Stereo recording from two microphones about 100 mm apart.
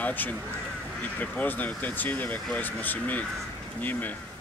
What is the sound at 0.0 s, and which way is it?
Speech, 15° left (ahead or behind).